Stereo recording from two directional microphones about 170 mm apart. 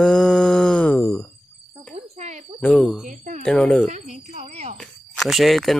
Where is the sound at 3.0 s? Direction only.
45° right (ahead or behind).